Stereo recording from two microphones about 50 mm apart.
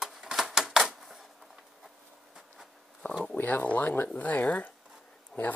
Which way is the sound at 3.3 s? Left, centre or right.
Left.